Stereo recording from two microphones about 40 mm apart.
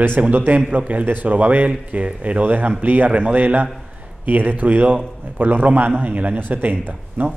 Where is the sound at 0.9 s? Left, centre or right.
Right.